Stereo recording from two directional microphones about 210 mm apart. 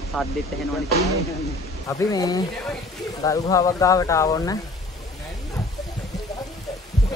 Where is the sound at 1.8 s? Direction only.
15° left (ahead or behind).